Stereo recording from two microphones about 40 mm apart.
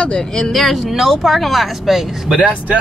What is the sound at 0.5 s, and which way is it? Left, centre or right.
Speech, centre.